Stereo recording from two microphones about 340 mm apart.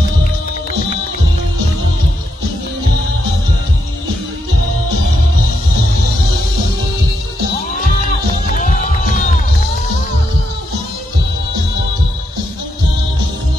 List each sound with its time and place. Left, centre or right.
8.5 s music: left